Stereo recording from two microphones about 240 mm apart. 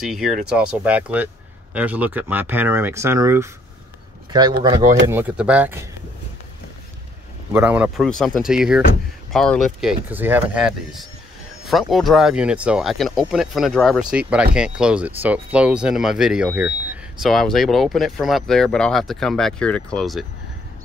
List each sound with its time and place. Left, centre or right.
0.0 s speech: centre
7.5 s speech: centre